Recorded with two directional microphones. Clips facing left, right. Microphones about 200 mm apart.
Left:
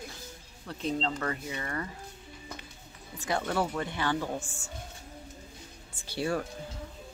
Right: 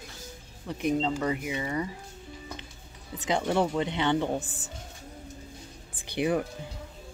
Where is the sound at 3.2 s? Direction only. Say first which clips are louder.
Right 4 dB; 15° right (ahead or behind).